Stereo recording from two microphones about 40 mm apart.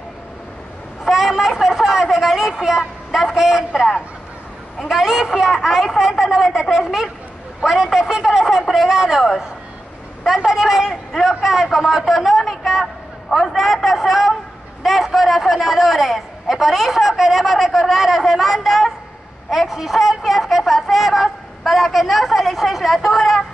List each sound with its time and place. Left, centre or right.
1.1 s a sound: centre
3.3 s a man's voice: centre
3.7 s a woman's voice: centre
10.2 s a man's voice: centre
13.3 s a sound: centre
14.8 s a man's voice: centre